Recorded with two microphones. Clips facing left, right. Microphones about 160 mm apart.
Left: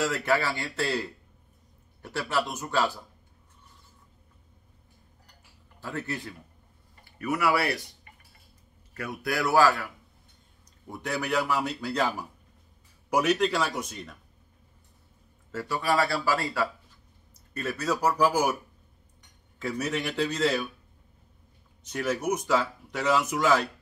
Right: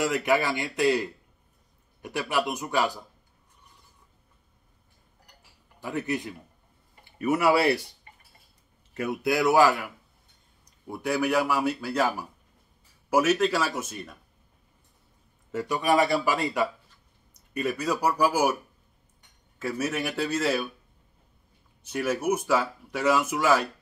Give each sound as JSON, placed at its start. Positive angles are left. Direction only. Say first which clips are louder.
{"t": 0.0, "sound": "speech", "louder": "right 2 dB", "side_deg": -15}
{"t": 5.8, "sound": "speech", "louder": "right 5 dB", "side_deg": -15}
{"t": 10.9, "sound": "speech", "louder": "right 5 dB", "side_deg": -10}
{"t": 15.5, "sound": "speech", "louder": "right 3 dB", "side_deg": -20}
{"t": 19.6, "sound": "speech", "louder": "right 1 dB", "side_deg": -5}
{"t": 21.8, "sound": "speech", "louder": "right 2 dB", "side_deg": -10}